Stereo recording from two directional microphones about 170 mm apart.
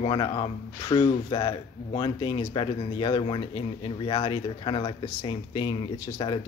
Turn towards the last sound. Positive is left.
turn(degrees=25)  # may be behind; listen again after turning